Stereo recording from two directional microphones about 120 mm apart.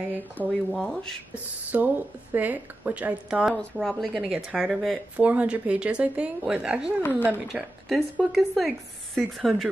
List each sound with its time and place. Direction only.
0.4 s speech: 15° left (ahead or behind)
1.7 s speech: 15° right (ahead or behind)
5.1 s speech: 10° right (ahead or behind)
7.0 s speech: 15° left (ahead or behind)
7.5 s speech: 10° right (ahead or behind)